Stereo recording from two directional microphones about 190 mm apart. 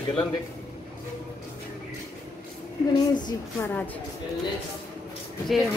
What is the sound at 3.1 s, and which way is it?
Speech, 25° left (ahead or behind).